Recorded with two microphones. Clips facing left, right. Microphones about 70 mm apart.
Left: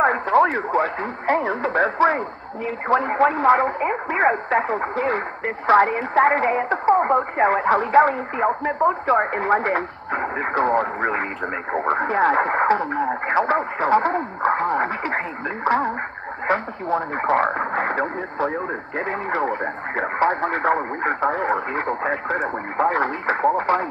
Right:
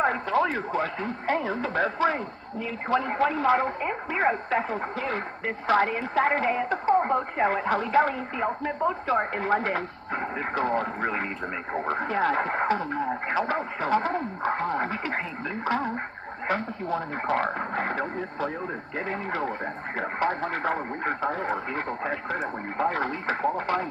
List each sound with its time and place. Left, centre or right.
0.0 s a woman's voice: left